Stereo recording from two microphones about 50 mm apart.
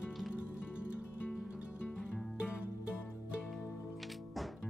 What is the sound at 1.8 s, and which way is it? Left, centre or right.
Music, left.